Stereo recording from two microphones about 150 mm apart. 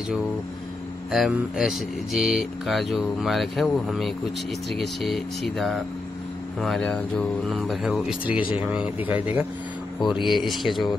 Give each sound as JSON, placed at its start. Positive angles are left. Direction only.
{"t": 1.1, "sound": "speech", "side_deg": 0}
{"t": 10.2, "sound": "speech", "side_deg": 0}